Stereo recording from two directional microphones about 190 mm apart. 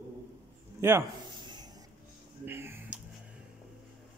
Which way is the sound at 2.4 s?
10° right (ahead or behind).